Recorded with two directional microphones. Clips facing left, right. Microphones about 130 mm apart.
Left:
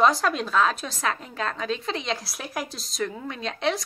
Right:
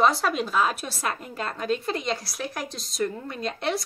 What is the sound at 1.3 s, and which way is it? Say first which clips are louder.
Speech: left 2 dB; 90° left.